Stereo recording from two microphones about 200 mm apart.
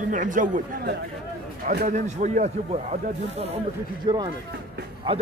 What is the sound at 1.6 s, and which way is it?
Speech, 55° right (ahead or behind).